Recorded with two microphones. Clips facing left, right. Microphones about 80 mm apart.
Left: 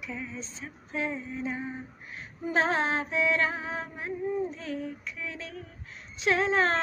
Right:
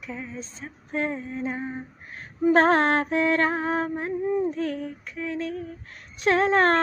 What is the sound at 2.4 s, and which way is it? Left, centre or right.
Female singing, right.